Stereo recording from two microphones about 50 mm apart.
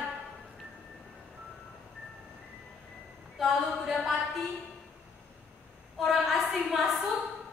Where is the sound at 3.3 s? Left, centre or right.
Centre.